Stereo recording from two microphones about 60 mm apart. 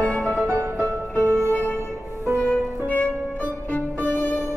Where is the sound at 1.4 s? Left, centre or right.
Left.